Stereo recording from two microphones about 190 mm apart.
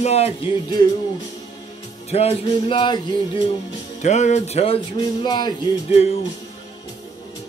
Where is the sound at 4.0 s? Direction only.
40° left (ahead or behind).